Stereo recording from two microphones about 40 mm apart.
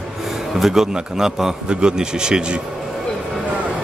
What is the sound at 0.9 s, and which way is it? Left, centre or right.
Speech, centre.